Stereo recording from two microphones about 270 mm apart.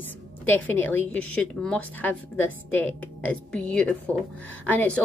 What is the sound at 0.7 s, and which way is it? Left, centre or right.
Speech, centre.